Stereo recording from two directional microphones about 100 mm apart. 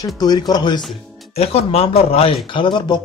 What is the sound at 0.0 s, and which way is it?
Speech, 40° left (ahead or behind).